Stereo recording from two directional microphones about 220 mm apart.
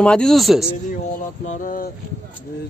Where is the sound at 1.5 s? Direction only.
35° left (ahead or behind).